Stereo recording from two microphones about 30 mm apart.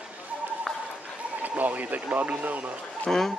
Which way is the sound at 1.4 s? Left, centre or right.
Right.